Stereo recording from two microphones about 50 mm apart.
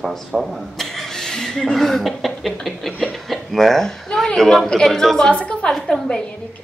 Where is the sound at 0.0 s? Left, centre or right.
Centre; by 5.7 s left.